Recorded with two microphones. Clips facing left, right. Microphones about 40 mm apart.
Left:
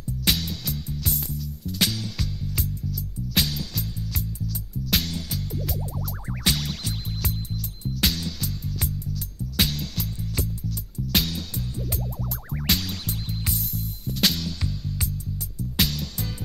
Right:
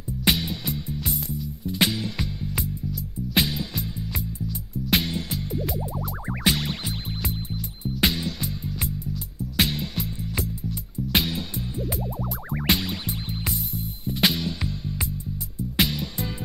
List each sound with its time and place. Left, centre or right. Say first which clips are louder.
0.2 s music: right 3 dB; right